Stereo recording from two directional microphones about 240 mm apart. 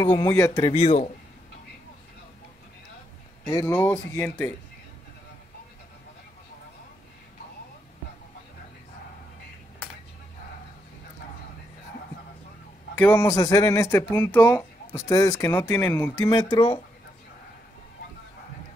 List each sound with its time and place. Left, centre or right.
0.0 s speech: centre; by 1.0 s left
3.4 s speech: centre
12.9 s speech: centre